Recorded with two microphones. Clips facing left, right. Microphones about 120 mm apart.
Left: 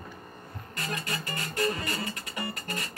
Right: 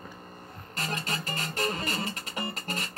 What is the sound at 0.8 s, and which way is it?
Music, 30° right (ahead or behind).